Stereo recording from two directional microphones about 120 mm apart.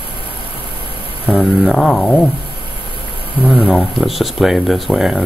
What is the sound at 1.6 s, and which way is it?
Speech, centre (ahead or behind).